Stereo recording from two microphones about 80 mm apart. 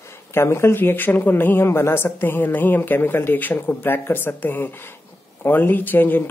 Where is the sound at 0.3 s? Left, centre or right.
Left.